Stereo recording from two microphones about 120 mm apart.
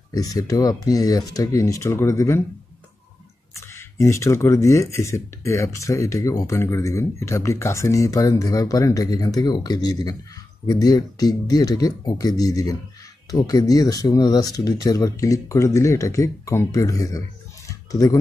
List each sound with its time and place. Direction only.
0.1 s speech: 30° left (ahead or behind)
3.5 s speech: 20° left (ahead or behind)
17.6 s a sound: 30° left (ahead or behind)